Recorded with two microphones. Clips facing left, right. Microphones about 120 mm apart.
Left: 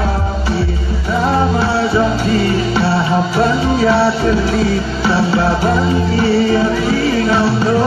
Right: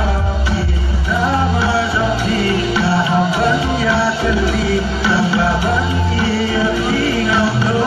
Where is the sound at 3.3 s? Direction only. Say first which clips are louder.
Left 2 dB; 40° left (ahead or behind).